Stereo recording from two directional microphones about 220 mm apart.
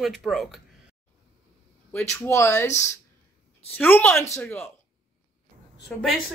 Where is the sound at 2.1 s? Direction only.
15° left (ahead or behind).